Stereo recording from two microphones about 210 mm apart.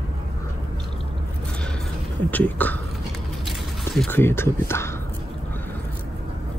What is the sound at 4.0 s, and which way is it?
Speech, 10° left (ahead or behind).